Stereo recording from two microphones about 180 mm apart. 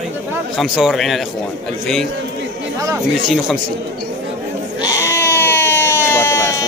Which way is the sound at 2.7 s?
20° right (ahead or behind).